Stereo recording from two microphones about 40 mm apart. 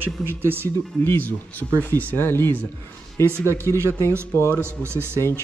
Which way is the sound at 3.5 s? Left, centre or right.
Right.